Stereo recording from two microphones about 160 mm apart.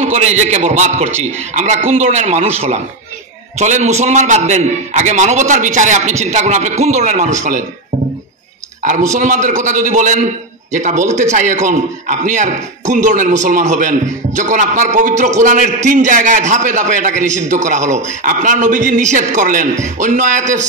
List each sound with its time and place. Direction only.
0.0 s a man's voice: 45° right (ahead or behind)
9.1 s a man's voice: 50° right (ahead or behind)